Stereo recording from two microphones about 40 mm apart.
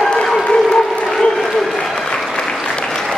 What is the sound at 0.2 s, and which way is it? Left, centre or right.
Applause, centre.